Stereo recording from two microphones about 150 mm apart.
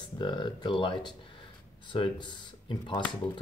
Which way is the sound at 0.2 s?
30° left (ahead or behind).